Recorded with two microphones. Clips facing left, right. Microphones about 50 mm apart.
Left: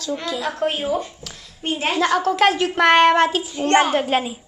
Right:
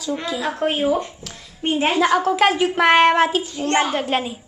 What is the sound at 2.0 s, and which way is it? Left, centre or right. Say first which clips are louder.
A child's voice: left 1 dB; centre.